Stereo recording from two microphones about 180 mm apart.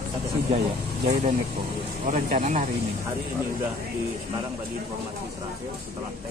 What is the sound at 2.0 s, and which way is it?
Speech, 45° right (ahead or behind).